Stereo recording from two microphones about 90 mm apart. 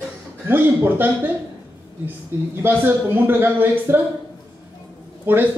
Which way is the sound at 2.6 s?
25° right (ahead or behind).